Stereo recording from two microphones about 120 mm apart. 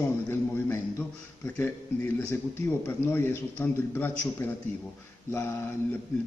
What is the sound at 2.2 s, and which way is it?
A man's voice, 20° left (ahead or behind).